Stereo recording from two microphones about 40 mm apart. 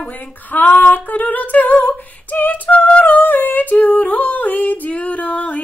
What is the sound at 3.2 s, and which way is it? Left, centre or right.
Female singing, left.